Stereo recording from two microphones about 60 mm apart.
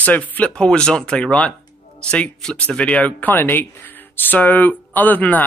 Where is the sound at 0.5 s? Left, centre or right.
Centre.